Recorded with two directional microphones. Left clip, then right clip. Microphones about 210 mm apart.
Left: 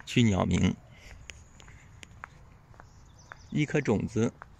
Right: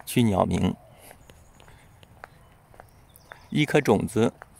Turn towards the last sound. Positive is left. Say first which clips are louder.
# right 7 dB
turn(degrees=-15)  # may be behind; listen again after turning